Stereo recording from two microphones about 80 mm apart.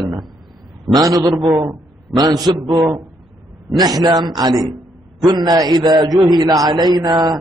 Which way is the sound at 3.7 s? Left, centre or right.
Right.